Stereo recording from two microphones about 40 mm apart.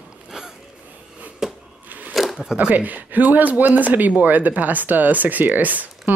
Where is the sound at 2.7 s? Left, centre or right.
Right.